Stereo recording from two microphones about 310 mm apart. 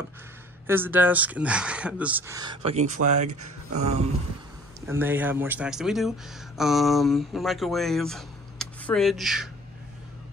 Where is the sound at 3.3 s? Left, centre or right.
Right.